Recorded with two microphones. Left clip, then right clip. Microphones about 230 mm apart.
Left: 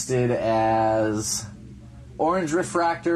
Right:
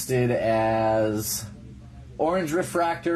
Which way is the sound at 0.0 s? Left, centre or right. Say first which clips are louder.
Even; centre.